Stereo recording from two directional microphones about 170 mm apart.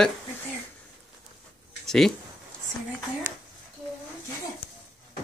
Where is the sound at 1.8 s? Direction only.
Centre (ahead or behind).